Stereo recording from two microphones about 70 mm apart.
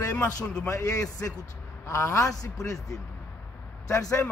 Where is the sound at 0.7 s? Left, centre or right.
Left.